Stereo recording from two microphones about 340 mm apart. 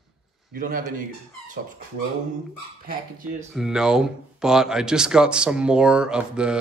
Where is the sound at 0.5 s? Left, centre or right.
Right.